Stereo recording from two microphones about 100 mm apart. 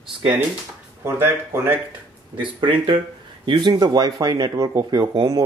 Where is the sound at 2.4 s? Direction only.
55° right (ahead or behind); by 5.1 s 30° right (ahead or behind).